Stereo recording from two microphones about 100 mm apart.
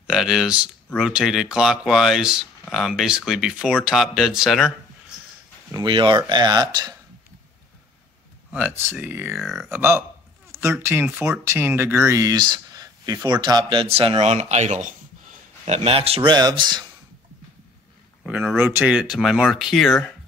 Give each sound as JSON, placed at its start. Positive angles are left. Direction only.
{"t": 0.0, "sound": "speech", "side_deg": -5}
{"t": 5.9, "sound": "speech", "side_deg": -55}
{"t": 8.5, "sound": "speech", "side_deg": -15}
{"t": 9.4, "sound": "speech", "side_deg": 0}
{"t": 9.7, "sound": "speech", "side_deg": -25}
{"t": 14.2, "sound": "speech", "side_deg": -90}
{"t": 15.6, "sound": "a man's voice", "side_deg": -85}
{"t": 16.3, "sound": "speech", "side_deg": -45}
{"t": 18.2, "sound": "speech", "side_deg": -10}
{"t": 18.9, "sound": "speech", "side_deg": -5}